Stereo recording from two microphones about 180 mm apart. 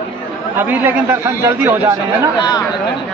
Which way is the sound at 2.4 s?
25° left (ahead or behind).